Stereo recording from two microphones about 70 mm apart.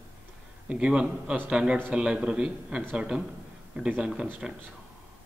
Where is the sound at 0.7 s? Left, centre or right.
Centre.